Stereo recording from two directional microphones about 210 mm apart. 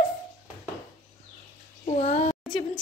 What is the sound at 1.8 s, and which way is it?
Child singing, 30° left (ahead or behind).